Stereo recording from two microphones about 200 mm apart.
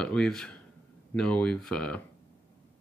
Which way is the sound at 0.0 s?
5° left (ahead or behind).